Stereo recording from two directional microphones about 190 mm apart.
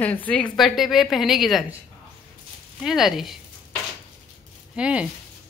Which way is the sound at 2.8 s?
Centre (ahead or behind).